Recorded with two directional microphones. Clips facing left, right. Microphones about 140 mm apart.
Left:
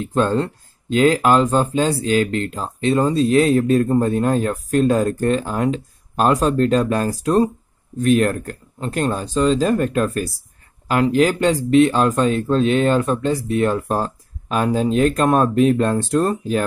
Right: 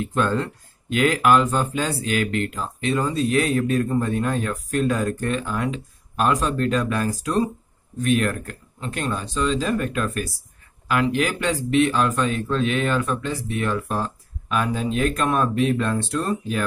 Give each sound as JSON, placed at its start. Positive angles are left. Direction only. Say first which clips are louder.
{"t": 0.0, "sound": "speech", "louder": "left 4 dB", "side_deg": 30}